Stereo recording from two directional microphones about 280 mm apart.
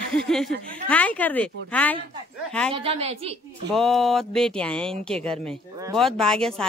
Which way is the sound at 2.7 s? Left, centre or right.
Centre.